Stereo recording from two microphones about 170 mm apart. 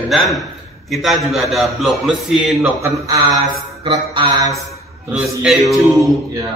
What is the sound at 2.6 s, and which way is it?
Speech, 15° right (ahead or behind).